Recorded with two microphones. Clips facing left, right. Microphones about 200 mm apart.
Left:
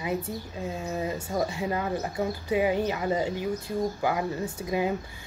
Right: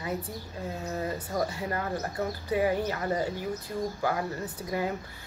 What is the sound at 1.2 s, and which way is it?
Speech, 25° left (ahead or behind).